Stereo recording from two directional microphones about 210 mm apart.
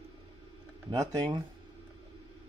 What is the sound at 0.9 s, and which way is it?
Speech, 20° right (ahead or behind).